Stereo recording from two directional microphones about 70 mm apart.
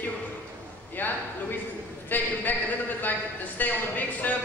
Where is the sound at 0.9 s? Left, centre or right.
Left.